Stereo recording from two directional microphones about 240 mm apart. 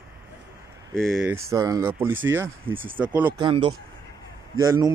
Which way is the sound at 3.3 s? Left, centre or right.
Right.